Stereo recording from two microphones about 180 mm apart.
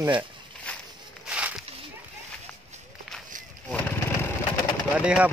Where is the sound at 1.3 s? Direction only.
5° right (ahead or behind).